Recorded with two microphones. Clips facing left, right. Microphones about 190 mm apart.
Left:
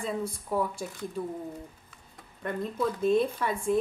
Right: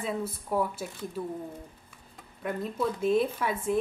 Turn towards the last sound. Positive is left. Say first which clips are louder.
# left 1 dB
turn(degrees=-5)  # may be behind; listen again after turning